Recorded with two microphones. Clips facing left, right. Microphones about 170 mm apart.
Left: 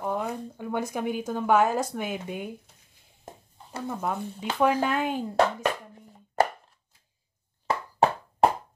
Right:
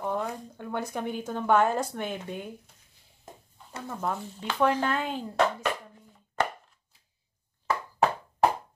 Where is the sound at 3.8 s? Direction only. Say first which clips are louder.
Left 2 dB; 15° left (ahead or behind).